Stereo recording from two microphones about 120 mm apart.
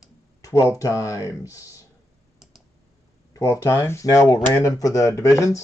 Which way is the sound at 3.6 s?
25° left (ahead or behind).